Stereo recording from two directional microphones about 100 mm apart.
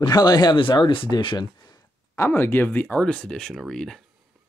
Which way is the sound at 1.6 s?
35° left (ahead or behind).